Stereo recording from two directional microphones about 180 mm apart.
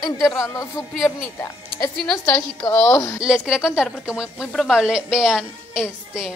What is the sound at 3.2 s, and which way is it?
A woman's voice, 5° right (ahead or behind).